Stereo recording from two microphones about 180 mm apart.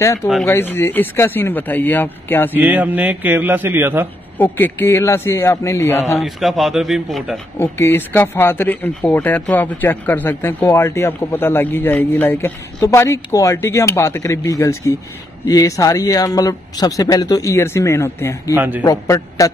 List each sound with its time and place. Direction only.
0.0 s speech: 15° left (ahead or behind)
2.5 s a man's voice: 10° right (ahead or behind)
4.4 s speech: 10° left (ahead or behind)
6.1 s speech: centre (ahead or behind)
7.5 s speech: 15° left (ahead or behind)
18.5 s a man's voice: 10° right (ahead or behind)
18.9 s speech: 20° left (ahead or behind)